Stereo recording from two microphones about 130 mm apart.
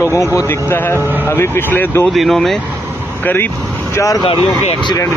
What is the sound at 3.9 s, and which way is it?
Speech, 25° left (ahead or behind).